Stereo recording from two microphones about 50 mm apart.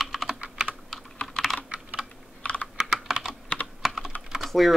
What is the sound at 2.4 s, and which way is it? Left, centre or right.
Computer keyboard, left.